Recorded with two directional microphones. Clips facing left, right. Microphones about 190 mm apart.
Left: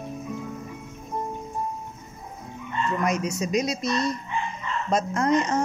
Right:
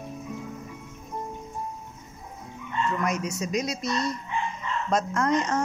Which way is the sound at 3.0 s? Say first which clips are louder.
Left 3 dB; 15° left (ahead or behind).